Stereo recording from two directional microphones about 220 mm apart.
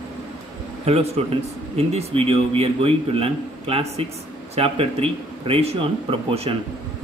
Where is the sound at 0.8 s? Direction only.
30° right (ahead or behind).